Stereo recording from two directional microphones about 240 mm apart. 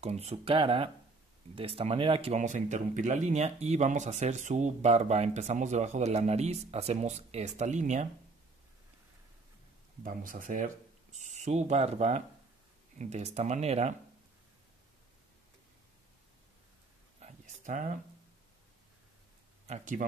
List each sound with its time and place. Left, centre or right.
0.0 s speech: right
10.0 s speech: right
17.2 s a sound: right
19.7 s speech: right